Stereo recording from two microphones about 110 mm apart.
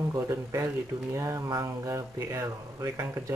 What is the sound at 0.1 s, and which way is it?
Speech, 30° right (ahead or behind).